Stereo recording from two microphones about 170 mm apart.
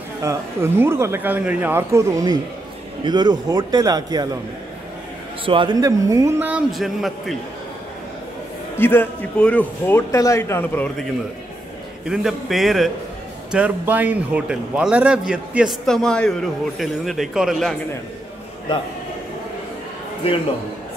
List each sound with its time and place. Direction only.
0.2 s a man's voice: 15° right (ahead or behind)
5.4 s a man's voice: 30° right (ahead or behind)
6.5 s a man's voice: centre (ahead or behind)
8.7 s a man's voice: 10° left (ahead or behind)
12.1 s a man's voice: centre (ahead or behind)